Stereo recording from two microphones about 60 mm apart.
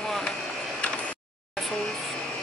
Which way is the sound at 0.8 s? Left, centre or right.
Left.